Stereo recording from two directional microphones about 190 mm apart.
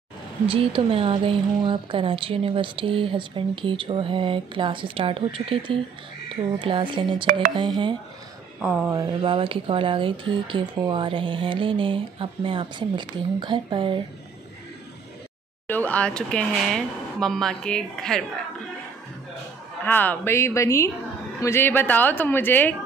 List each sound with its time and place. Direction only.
0.5 s speech: 30° right (ahead or behind)
8.5 s speech: 5° right (ahead or behind)
8.9 s speech: 20° right (ahead or behind)
15.6 s speech: 10° left (ahead or behind)
19.8 s a woman's voice: 10° left (ahead or behind)